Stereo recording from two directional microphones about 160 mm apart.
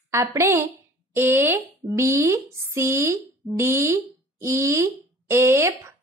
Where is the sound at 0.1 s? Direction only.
20° right (ahead or behind).